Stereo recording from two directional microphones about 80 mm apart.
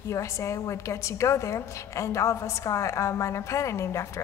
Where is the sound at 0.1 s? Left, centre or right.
Left.